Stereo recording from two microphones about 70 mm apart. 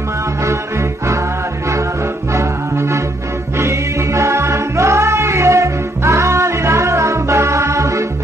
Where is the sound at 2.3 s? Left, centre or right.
Right.